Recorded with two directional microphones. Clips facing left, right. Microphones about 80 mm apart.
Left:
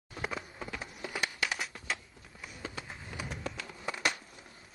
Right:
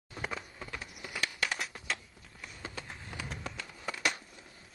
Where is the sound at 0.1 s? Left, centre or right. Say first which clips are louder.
Left 1 dB; centre.